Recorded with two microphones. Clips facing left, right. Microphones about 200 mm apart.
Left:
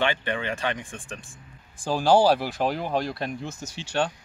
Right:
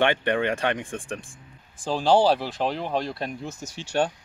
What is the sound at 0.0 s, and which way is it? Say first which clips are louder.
Speech: right 4 dB; 60° right (ahead or behind).